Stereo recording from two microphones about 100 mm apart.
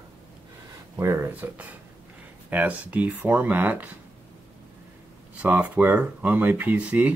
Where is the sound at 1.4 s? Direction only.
25° right (ahead or behind).